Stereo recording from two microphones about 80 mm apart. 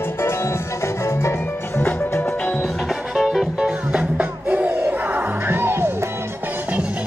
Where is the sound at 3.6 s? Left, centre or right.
Centre; by 6.1 s right.